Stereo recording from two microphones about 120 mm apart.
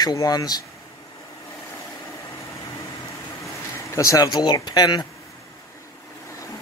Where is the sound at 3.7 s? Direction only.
25° left (ahead or behind).